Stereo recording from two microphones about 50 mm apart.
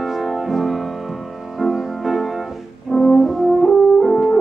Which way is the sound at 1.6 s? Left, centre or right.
Centre.